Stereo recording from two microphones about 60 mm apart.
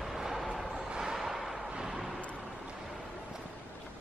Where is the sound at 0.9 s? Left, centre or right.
Centre.